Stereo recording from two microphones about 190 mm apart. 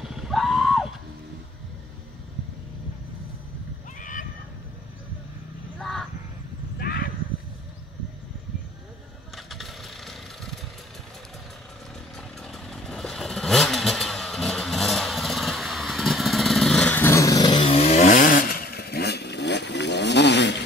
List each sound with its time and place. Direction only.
0.0 s a sound: centre (ahead or behind)
4.0 s a sound: 45° left (ahead or behind)
5.8 s crow: centre (ahead or behind)
6.8 s horse: 50° left (ahead or behind)
9.5 s vehicle: centre (ahead or behind)
12.2 s motorcycle: centre (ahead or behind); by 20.5 s 65° left (ahead or behind)